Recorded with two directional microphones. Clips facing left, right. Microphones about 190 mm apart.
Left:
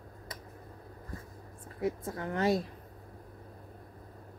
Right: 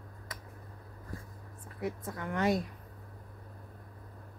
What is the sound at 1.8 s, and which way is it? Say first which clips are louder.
Speech: left 3 dB; 30° left (ahead or behind).